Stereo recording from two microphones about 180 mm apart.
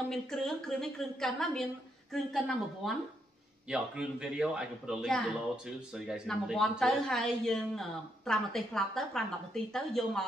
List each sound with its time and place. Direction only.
0.1 s a woman's voice: centre (ahead or behind)